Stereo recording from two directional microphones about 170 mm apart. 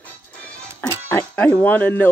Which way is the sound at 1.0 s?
10° left (ahead or behind).